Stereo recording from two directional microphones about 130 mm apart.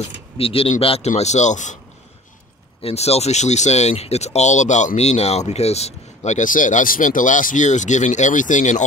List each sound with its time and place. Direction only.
0.4 s a man's voice: 45° left (ahead or behind); by 1.8 s 70° left (ahead or behind)
2.8 s speech: 50° left (ahead or behind); by 8.8 s 70° left (ahead or behind)